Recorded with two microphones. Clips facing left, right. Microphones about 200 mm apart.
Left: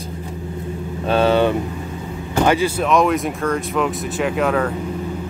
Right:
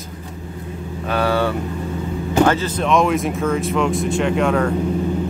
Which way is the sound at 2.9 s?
Centre (ahead or behind).